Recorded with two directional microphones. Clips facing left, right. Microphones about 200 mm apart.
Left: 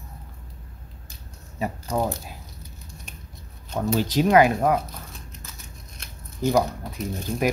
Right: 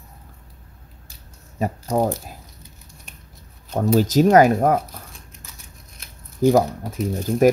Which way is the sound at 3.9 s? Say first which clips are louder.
Right 4 dB; 45° right (ahead or behind).